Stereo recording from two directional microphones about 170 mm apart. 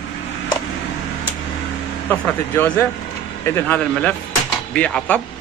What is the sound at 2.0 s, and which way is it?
Speech, 10° left (ahead or behind).